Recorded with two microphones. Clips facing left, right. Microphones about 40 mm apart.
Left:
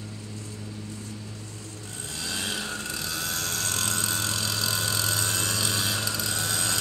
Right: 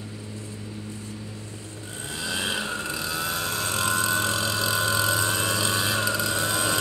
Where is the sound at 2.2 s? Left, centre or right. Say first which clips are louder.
Right 4 dB; right.